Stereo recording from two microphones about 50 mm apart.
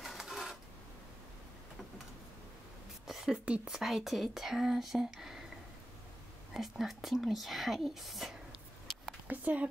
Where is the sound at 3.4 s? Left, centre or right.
Right.